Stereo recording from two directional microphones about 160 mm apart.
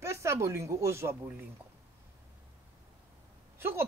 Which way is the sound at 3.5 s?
15° right (ahead or behind).